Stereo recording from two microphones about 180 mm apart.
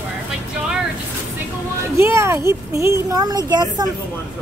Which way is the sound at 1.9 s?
15° right (ahead or behind).